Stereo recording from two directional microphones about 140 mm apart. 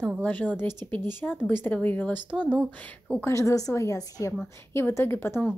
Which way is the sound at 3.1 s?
20° left (ahead or behind).